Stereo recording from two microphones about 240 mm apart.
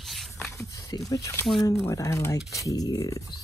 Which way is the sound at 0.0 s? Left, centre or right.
Centre.